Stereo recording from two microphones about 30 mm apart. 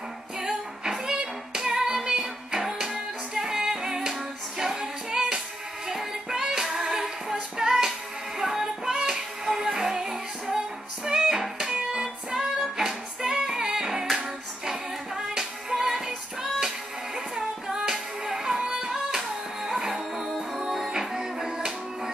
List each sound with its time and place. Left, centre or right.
0.4 s music: centre
11.9 s female singing: right
14.1 s music: centre